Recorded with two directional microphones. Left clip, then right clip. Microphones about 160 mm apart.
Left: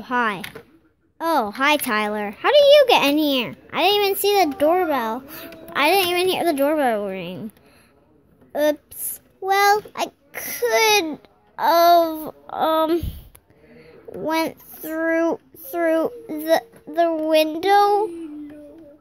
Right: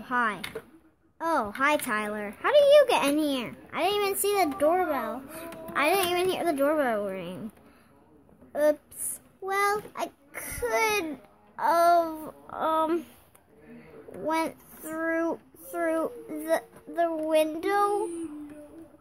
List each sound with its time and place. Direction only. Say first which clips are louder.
0.0 s a child's voice: left 6 dB; 30° left (ahead or behind)
9.5 s a child's voice: left 10 dB; 25° left (ahead or behind)
14.2 s a child's voice: left 6 dB; 25° left (ahead or behind)